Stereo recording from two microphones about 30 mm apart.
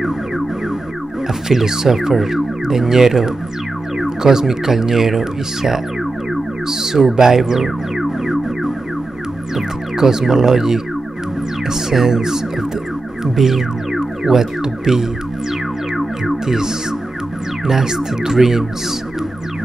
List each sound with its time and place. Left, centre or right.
1.5 s speech: centre
7.2 s music: centre
9.9 s speech: centre
13.9 s music: centre
16.4 s speech: centre